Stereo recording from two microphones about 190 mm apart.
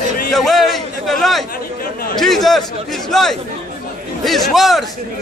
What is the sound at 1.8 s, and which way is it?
Chatter, 50° left (ahead or behind).